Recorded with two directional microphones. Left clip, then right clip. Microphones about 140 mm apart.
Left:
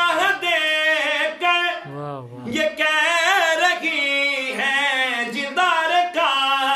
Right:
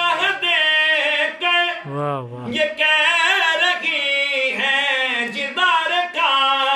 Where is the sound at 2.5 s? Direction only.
40° left (ahead or behind).